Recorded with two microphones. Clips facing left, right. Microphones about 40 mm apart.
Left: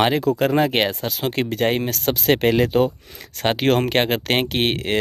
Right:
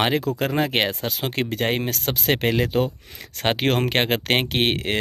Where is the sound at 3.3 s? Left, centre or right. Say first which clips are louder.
Left 2 dB; right.